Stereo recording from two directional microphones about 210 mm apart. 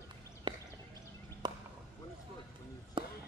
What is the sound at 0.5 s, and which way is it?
Clip-clop, 20° right (ahead or behind).